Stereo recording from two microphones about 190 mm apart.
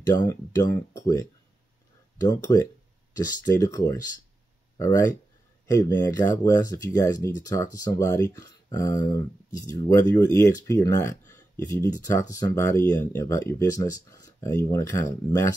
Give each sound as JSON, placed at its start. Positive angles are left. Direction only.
{"t": 0.0, "sound": "speech", "side_deg": 20}